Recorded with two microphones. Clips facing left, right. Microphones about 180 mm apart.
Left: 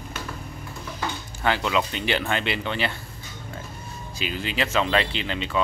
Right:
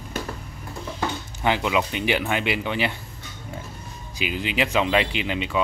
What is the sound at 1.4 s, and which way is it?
Speech, 15° right (ahead or behind).